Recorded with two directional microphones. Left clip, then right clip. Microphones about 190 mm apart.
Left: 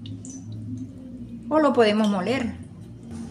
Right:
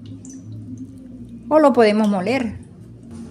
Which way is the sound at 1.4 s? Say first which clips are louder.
Right 6 dB; 45° right (ahead or behind).